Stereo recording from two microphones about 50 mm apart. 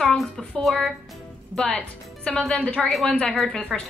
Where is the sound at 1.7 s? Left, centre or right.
Left.